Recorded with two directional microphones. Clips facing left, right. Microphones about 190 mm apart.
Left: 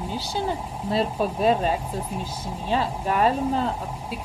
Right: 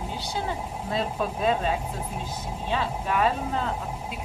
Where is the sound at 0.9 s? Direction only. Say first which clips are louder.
Left 4 dB; 35° left (ahead or behind).